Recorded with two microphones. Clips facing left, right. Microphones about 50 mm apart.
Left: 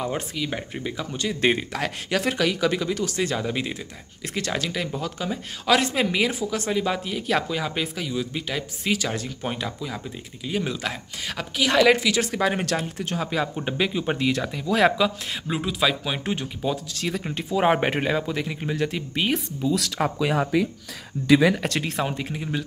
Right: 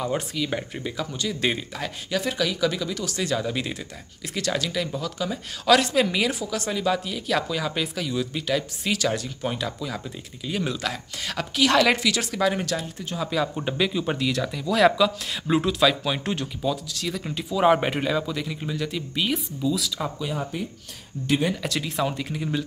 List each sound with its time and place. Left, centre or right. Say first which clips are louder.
0.0 s speech: right 1 dB; centre
1.1 s speech: left 5 dB; left
1.7 s speech: left 3 dB; left
4.2 s speech: even; left; by 12.2 s centre
12.2 s speech: left 1 dB; left
15.6 s speech: left 1 dB; centre
16.7 s speech: left 2 dB; left
19.7 s speech: left 5 dB; left
20.2 s speech: left 7 dB; left
21.6 s speech: left 2 dB; left
21.9 s speech: right 1 dB; left
22.4 s speech: right 4 dB; centre